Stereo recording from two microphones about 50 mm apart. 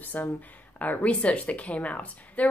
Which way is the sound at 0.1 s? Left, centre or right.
Left.